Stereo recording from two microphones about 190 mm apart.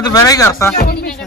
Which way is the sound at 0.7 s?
55° left (ahead or behind).